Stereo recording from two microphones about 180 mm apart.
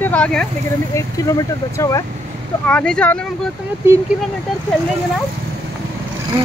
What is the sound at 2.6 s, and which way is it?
Speech, 5° left (ahead or behind).